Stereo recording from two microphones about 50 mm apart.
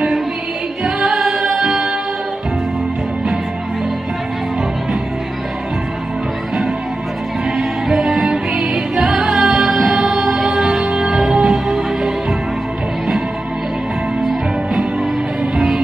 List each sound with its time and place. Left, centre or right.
0.8 s music: centre
7.5 s music: centre
15.5 s music: centre